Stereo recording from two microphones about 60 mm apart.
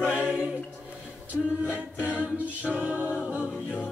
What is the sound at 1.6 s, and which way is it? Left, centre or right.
Chant, right.